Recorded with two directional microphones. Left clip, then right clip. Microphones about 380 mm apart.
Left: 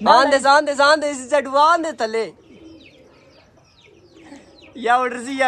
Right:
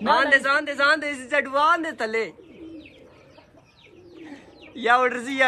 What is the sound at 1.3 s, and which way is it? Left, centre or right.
A woman's voice, centre.